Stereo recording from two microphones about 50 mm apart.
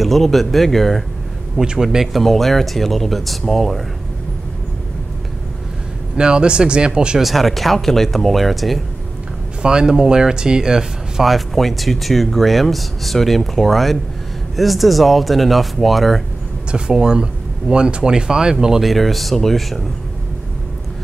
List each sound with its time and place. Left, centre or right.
0.0 s speech: centre
1.6 s speech: centre
2.2 s speech: centre
6.1 s speech: centre
7.2 s speech: centre
9.6 s speech: centre
16.7 s speech: centre
18.9 s speech: centre